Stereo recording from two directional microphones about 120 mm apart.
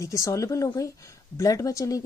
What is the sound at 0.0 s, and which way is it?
A woman's voice, 25° left (ahead or behind).